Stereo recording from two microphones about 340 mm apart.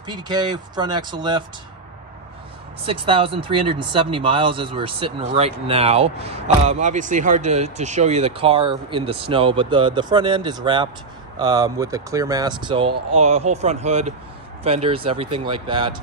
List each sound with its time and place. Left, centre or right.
0.0 s speech: centre
2.8 s speech: centre